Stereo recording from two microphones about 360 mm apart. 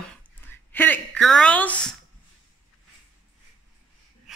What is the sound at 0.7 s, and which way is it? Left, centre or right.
A woman's voice, centre.